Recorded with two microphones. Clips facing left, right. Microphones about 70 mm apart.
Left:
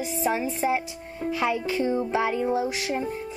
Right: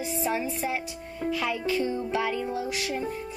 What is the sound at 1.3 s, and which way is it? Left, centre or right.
Music, left.